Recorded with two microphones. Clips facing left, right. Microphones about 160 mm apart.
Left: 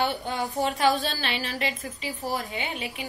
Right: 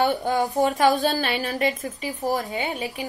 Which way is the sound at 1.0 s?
45° right (ahead or behind).